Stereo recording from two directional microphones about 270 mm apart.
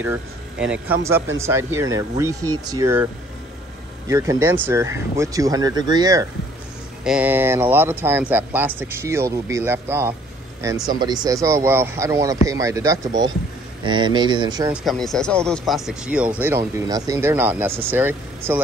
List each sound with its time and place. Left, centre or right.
0.0 s speech: centre
4.1 s speech: centre
14.7 s speech: centre